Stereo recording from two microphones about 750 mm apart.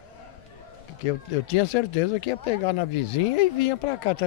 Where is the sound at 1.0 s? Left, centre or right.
Left.